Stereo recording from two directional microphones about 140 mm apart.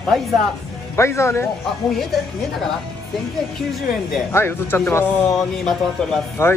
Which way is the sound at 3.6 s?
Centre (ahead or behind).